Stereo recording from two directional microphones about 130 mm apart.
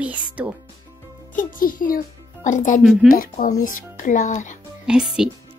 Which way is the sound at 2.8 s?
5° right (ahead or behind).